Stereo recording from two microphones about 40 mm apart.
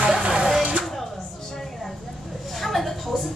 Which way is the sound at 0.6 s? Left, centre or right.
Right.